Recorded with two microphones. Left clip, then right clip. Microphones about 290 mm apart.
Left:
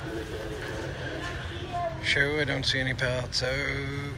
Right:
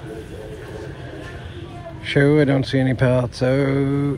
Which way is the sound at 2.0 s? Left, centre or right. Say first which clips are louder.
Right 10 dB; centre.